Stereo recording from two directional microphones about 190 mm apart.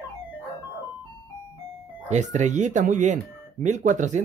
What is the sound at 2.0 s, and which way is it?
Speech, 40° right (ahead or behind).